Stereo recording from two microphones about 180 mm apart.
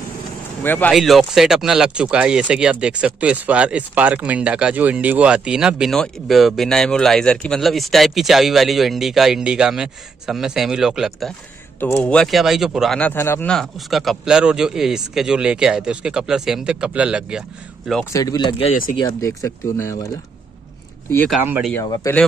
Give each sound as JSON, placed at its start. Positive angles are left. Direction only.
{"t": 0.7, "sound": "speech", "side_deg": 10}
{"t": 18.1, "sound": "speech", "side_deg": 20}
{"t": 21.4, "sound": "speech", "side_deg": -10}
{"t": 21.8, "sound": "speech", "side_deg": 20}